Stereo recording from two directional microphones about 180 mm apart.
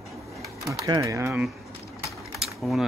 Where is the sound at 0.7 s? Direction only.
15° right (ahead or behind).